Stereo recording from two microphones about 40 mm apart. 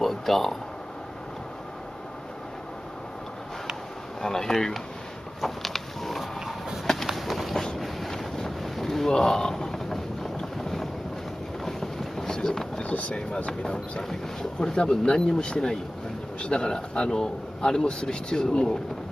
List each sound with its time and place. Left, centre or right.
0.0 s a sound: centre
4.2 s speech: centre
5.4 s a sound: centre
7.7 s boat: centre
9.1 s vehicle: centre
11.6 s boat: centre
12.8 s speech: left
13.6 s a man's voice: left